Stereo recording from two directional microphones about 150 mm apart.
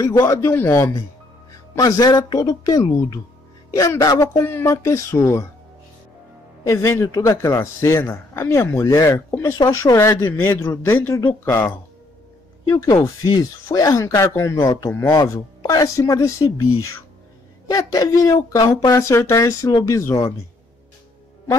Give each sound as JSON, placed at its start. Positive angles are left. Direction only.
{"t": 0.0, "sound": "speech", "side_deg": 20}
{"t": 6.6, "sound": "speech", "side_deg": 20}